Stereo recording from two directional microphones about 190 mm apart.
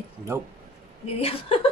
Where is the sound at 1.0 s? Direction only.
30° left (ahead or behind).